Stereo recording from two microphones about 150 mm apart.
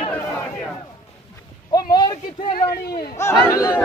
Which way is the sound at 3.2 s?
20° left (ahead or behind).